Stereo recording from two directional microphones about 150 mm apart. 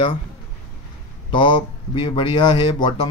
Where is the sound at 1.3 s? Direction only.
30° left (ahead or behind).